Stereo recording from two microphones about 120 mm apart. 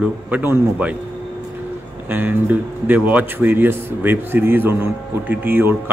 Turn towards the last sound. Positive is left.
turn(degrees=-15)  # may be behind; listen again after turning